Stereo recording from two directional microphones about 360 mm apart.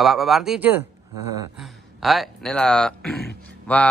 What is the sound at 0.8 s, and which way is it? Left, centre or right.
Speech, right.